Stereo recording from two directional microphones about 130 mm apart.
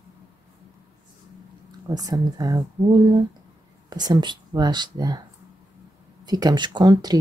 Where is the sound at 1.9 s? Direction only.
30° right (ahead or behind).